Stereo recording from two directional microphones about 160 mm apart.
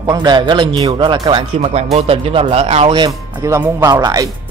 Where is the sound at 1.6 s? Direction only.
40° right (ahead or behind).